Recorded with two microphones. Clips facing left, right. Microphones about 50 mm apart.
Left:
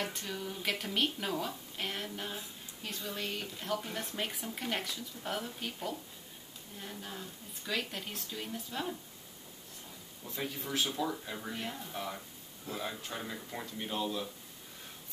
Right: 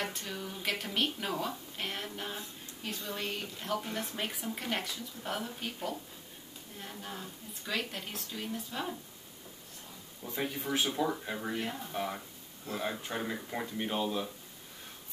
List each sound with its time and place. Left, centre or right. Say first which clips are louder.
0.0 s a woman's voice: even; centre
10.2 s speech: right 4 dB; right